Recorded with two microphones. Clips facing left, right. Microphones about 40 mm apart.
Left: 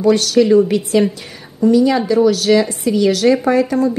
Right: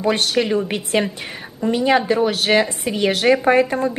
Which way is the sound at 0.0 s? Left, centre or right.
Right.